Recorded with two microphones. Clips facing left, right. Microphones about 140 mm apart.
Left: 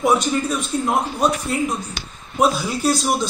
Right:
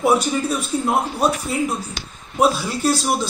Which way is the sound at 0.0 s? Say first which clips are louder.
Even; 5° right (ahead or behind).